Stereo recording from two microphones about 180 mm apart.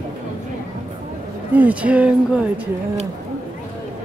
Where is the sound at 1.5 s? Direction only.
10° right (ahead or behind).